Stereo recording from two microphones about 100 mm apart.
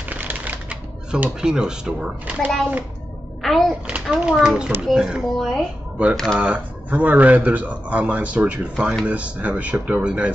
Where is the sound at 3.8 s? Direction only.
10° right (ahead or behind).